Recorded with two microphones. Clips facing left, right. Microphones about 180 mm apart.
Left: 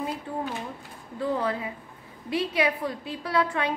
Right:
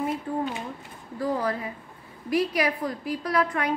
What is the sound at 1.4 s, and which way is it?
A woman's voice, 25° left (ahead or behind).